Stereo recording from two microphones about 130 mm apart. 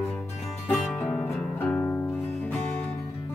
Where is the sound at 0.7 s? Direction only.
Centre (ahead or behind).